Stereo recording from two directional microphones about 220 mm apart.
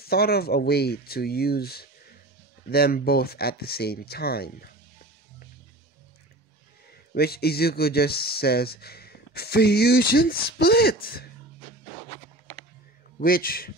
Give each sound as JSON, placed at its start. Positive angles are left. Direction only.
{"t": 0.0, "sound": "speech", "side_deg": 45}
{"t": 7.2, "sound": "speech", "side_deg": 45}
{"t": 13.2, "sound": "a man's voice", "side_deg": 40}